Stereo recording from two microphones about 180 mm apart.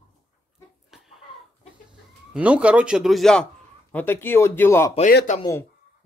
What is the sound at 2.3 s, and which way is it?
A man's voice, 5° right (ahead or behind).